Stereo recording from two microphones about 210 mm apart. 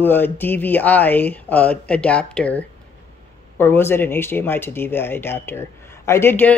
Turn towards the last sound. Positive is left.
turn(degrees=10)  # may be behind; listen again after turning